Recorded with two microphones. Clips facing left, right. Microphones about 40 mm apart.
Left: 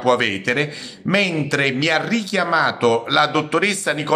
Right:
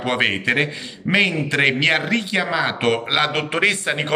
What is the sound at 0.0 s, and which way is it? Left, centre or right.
A man's voice, right.